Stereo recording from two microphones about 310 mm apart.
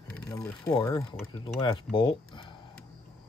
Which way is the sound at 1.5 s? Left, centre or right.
Centre.